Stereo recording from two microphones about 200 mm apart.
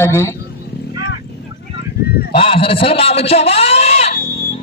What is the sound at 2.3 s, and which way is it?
A man's voice, 30° left (ahead or behind).